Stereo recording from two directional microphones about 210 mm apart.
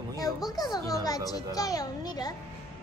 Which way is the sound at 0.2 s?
20° left (ahead or behind).